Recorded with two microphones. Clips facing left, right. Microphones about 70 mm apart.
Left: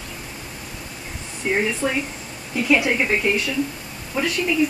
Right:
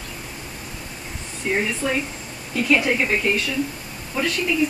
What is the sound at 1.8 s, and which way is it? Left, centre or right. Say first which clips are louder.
Speech: even; left.